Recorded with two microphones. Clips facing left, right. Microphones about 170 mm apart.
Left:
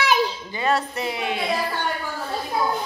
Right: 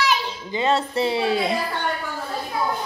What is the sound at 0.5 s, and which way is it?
Speech, 20° right (ahead or behind).